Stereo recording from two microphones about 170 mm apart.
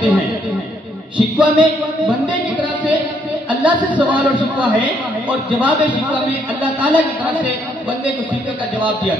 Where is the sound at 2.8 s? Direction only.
10° right (ahead or behind).